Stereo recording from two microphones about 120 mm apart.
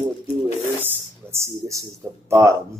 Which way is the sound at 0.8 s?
20° right (ahead or behind).